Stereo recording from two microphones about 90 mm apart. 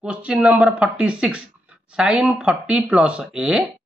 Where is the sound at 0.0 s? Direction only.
15° right (ahead or behind).